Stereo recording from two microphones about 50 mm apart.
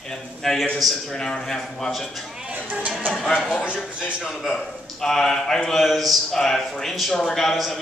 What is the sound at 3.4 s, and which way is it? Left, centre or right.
Speech, centre.